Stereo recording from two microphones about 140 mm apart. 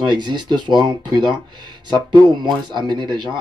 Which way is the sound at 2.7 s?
30° right (ahead or behind).